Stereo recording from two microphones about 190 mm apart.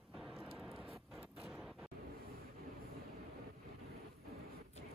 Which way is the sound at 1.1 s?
5° right (ahead or behind).